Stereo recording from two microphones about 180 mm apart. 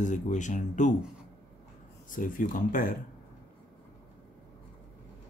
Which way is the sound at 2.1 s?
50° left (ahead or behind).